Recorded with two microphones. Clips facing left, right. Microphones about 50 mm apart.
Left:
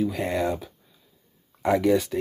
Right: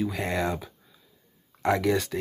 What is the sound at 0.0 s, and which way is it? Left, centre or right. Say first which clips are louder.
Speech: left 3 dB; centre.